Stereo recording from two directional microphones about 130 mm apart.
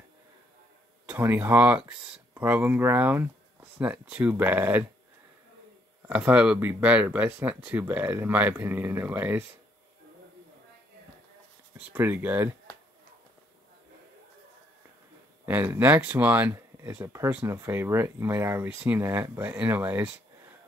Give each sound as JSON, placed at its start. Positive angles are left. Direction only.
{"t": 1.0, "sound": "speech", "side_deg": -15}
{"t": 6.0, "sound": "speech", "side_deg": -10}
{"t": 11.9, "sound": "speech", "side_deg": -15}
{"t": 15.4, "sound": "speech", "side_deg": -15}